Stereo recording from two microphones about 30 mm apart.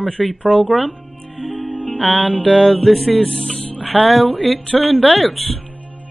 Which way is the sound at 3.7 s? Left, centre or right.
Left.